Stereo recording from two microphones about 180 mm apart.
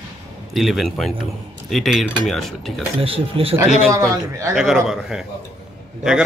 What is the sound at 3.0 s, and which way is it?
Speech, 30° right (ahead or behind).